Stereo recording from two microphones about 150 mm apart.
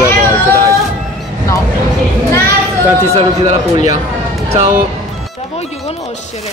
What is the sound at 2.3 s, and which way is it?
Speech, 15° left (ahead or behind).